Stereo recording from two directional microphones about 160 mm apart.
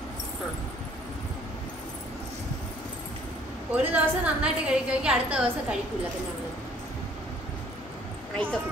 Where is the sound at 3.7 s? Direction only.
10° right (ahead or behind).